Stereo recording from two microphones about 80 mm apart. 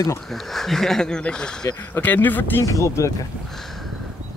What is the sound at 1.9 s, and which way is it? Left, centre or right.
Speech, left.